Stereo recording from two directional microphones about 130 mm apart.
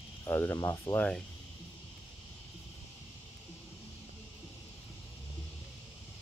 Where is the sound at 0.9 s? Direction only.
10° left (ahead or behind).